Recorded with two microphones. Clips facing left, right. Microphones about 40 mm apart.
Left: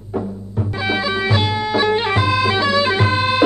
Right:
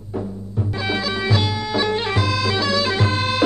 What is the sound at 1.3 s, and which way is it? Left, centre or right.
Music, centre.